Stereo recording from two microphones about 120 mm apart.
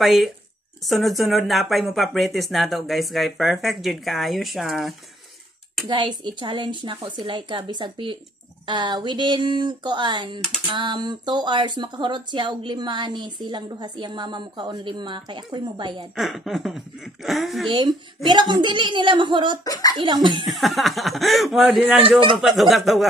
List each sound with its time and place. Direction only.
0.0 s speech: centre (ahead or behind)
5.9 s speech: 40° right (ahead or behind)
16.2 s speech: centre (ahead or behind)
17.6 s speech: 40° right (ahead or behind)
19.6 s a child's voice: 30° left (ahead or behind)
20.0 s speech: 40° right (ahead or behind)
20.4 s speech: centre (ahead or behind)